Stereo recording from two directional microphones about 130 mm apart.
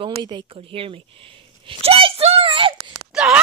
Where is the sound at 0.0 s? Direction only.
35° right (ahead or behind).